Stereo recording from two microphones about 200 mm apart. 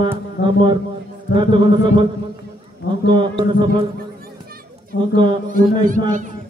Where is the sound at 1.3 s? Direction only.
25° right (ahead or behind).